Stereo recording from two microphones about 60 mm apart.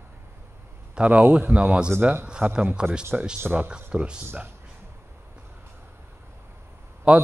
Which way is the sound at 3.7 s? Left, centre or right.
Centre.